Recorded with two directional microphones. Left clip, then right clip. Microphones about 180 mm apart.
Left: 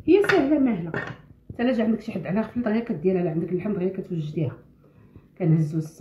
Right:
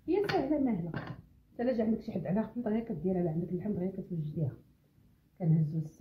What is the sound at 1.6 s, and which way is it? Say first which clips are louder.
Speech: left 8 dB; 25° right (ahead or behind).